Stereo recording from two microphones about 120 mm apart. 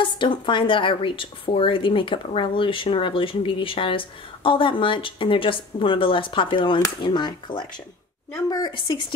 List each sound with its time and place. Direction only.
0.0 s a woman's voice: 40° left (ahead or behind)